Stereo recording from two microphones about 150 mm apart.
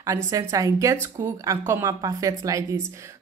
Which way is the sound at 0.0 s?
20° right (ahead or behind).